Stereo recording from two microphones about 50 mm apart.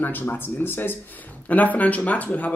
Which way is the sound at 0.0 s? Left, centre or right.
Left.